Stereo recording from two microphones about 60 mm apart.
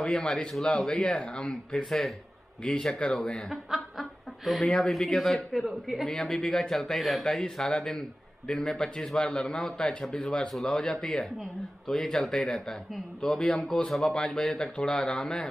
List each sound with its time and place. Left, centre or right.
0.0 s speech: centre
3.7 s snicker: centre
4.7 s a man's voice: centre
6.0 s speech: centre